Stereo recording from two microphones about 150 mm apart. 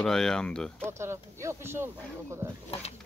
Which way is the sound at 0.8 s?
15° right (ahead or behind).